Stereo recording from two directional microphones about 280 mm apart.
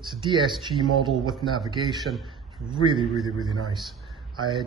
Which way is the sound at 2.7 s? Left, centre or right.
Centre.